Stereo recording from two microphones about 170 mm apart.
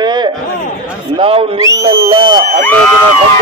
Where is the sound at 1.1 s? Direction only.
30° right (ahead or behind).